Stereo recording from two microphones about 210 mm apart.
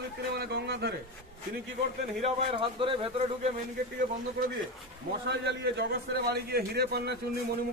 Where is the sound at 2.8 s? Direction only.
25° right (ahead or behind).